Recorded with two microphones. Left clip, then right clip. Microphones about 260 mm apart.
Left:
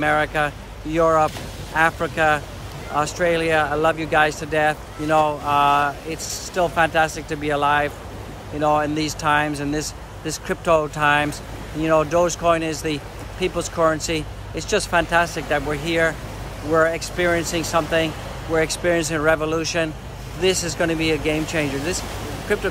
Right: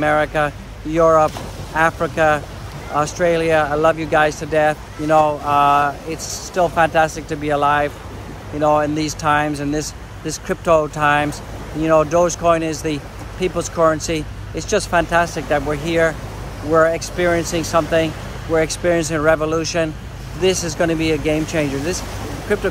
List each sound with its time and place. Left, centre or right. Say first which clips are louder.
0.0 s speech: right 3 dB; centre
6.1 s speech: right 2 dB; left
6.5 s speech: right 3 dB; centre